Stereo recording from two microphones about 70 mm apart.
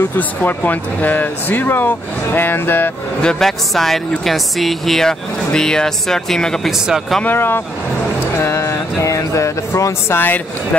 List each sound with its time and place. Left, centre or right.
0.4 s speech: left
3.2 s speech: centre
7.2 s speech: left
8.4 s a sound: left
10.1 s speech: left